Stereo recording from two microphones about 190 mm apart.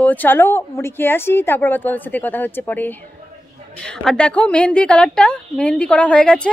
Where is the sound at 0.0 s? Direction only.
10° left (ahead or behind).